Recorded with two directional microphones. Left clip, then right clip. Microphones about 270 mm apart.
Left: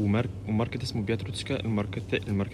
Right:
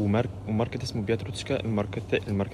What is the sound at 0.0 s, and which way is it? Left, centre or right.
Speech, centre.